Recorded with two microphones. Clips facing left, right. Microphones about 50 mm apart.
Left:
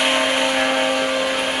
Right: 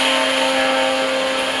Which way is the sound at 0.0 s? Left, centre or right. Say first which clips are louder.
Right 1 dB; centre.